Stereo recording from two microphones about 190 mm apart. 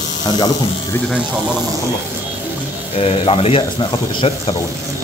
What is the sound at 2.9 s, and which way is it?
Speech, 30° left (ahead or behind).